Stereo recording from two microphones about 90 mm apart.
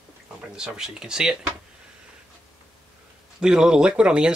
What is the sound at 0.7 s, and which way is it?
Speech, 5° right (ahead or behind).